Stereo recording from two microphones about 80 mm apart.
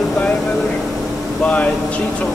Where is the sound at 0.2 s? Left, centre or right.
Centre.